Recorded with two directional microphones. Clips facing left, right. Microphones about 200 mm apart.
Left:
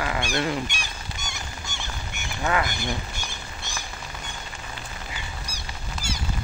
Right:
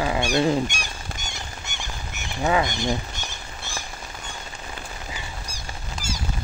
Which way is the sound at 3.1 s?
10° left (ahead or behind).